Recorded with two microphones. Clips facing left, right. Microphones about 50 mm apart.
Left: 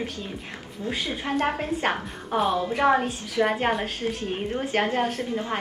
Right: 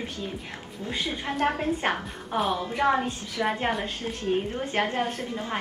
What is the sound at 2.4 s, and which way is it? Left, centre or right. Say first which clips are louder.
Music: left 3 dB; centre.